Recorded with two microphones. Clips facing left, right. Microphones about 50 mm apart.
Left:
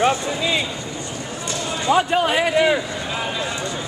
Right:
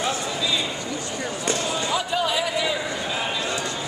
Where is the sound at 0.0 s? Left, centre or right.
Left.